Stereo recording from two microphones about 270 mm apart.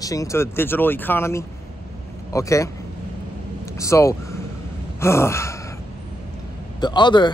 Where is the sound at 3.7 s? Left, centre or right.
Centre.